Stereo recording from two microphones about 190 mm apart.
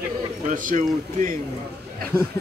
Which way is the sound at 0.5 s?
45° right (ahead or behind).